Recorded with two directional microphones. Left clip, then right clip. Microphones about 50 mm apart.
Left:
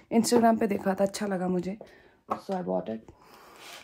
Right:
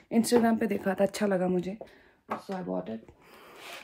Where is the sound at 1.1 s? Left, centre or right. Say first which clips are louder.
Right 3 dB; left.